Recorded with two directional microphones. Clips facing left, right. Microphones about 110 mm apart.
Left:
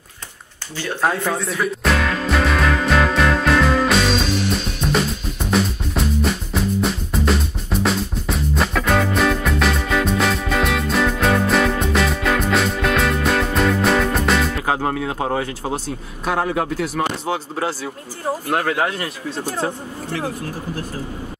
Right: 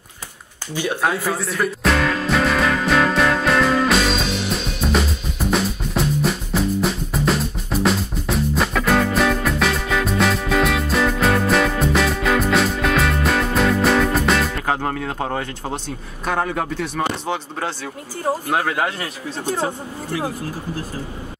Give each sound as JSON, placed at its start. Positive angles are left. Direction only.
{"t": 1.0, "sound": "music", "side_deg": 0}
{"t": 16.3, "sound": "speech", "side_deg": 5}